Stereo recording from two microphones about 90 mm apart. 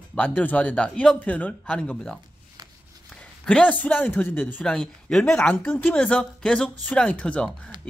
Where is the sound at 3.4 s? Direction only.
10° left (ahead or behind).